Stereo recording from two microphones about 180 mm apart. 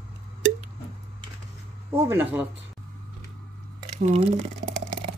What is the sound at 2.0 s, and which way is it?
Speech, 10° right (ahead or behind).